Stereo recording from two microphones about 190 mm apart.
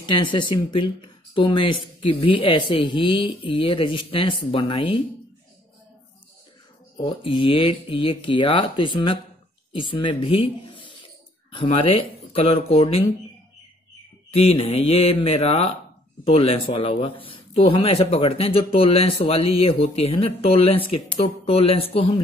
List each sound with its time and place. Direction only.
0.0 s speech: 25° left (ahead or behind)
7.0 s speech: 25° left (ahead or behind)
12.8 s speech: 20° left (ahead or behind)
14.3 s speech: 30° left (ahead or behind)